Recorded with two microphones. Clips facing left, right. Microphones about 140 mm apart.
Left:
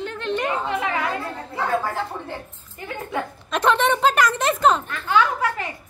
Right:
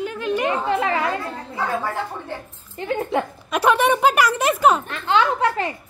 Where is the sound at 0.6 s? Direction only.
35° right (ahead or behind).